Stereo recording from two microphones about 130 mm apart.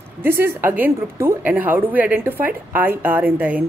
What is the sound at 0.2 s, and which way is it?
A woman's voice, 15° right (ahead or behind).